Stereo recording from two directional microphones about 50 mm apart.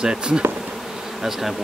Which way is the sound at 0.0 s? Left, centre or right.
Centre.